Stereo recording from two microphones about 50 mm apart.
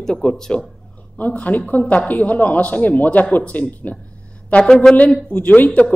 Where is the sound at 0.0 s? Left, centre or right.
Centre.